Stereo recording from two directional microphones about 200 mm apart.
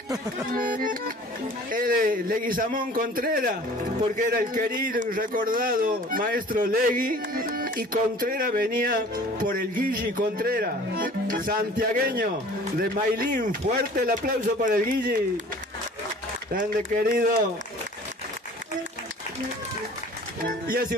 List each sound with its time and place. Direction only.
0.5 s a man's voice: 45° right (ahead or behind)
16.5 s a man's voice: 40° right (ahead or behind)
20.4 s speech: 45° right (ahead or behind)